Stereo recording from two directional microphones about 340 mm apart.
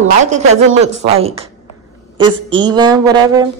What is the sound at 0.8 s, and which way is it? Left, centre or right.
Speech, centre.